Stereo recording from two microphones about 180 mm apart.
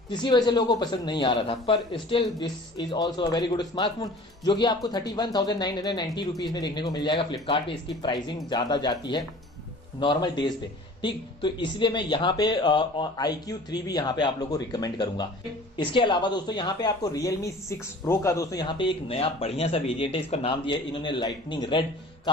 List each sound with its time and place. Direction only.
0.1 s a man's voice: 25° left (ahead or behind)